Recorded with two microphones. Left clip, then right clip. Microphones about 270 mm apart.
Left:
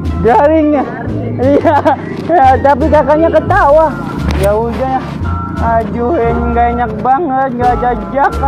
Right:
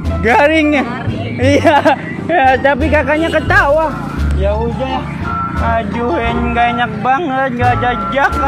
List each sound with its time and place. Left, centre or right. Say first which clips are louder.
0.2 s speech: left 2 dB; right
1.4 s speech: left 1 dB; right
5.7 s speech: left 5 dB; right